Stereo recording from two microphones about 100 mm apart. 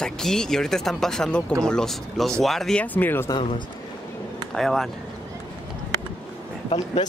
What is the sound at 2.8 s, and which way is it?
Speech, 15° left (ahead or behind).